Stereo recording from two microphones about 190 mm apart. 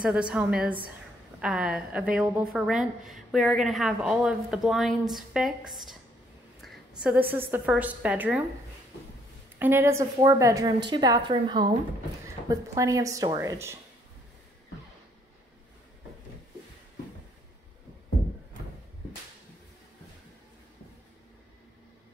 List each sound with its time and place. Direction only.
0.0 s a woman's voice: 5° right (ahead or behind)
9.6 s a woman's voice: 15° right (ahead or behind)